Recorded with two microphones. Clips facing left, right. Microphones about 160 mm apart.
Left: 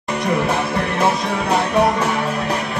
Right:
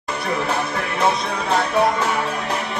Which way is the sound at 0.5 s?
5° left (ahead or behind).